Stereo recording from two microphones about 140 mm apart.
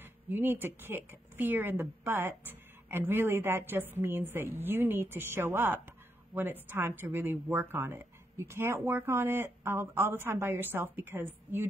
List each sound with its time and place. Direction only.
0.0 s speech: 15° right (ahead or behind)